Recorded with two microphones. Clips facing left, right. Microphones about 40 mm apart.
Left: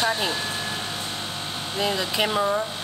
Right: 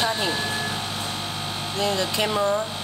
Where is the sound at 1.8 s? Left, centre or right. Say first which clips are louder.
Even; centre.